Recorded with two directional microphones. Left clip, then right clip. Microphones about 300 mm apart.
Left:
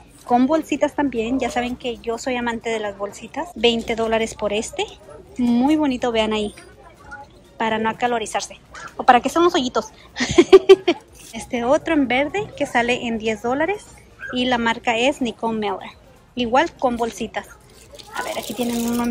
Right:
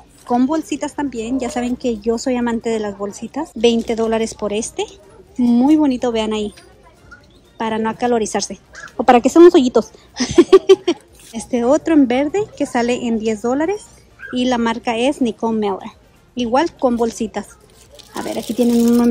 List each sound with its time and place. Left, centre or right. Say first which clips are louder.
0.3 s speech: even; centre
7.5 s a child's voice: right 1 dB; centre